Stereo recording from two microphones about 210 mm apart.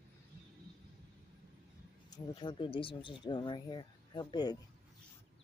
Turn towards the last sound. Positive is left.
turn(degrees=20)  # may be behind; listen again after turning